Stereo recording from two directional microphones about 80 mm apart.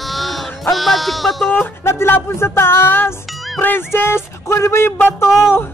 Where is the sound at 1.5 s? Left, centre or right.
Left.